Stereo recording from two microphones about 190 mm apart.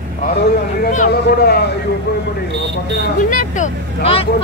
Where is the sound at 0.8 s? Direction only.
45° left (ahead or behind).